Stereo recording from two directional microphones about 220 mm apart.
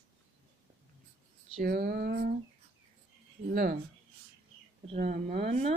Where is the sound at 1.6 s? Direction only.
45° right (ahead or behind).